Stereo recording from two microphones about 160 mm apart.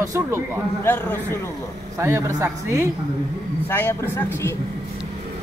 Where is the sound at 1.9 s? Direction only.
15° right (ahead or behind).